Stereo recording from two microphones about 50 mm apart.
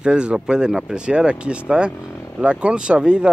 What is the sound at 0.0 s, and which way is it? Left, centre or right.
Speech, right.